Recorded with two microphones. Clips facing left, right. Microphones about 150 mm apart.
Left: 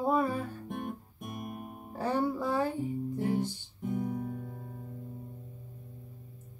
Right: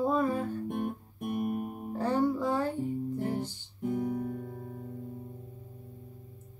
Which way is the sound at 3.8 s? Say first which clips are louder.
Right 2 dB; centre (ahead or behind).